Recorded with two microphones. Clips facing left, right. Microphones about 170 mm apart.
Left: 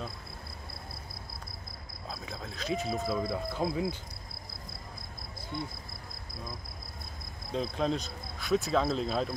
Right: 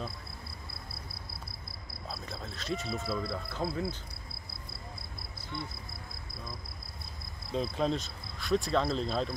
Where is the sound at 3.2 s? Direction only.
15° left (ahead or behind).